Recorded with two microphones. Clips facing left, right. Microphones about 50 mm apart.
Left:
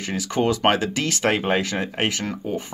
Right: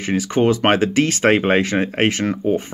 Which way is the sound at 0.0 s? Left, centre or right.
Right.